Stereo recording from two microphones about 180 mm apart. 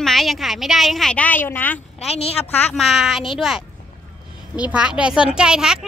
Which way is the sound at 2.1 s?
35° left (ahead or behind).